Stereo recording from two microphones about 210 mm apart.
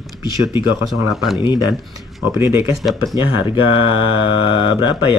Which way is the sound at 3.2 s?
25° left (ahead or behind).